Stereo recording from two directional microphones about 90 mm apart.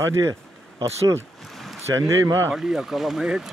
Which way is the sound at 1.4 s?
Centre (ahead or behind).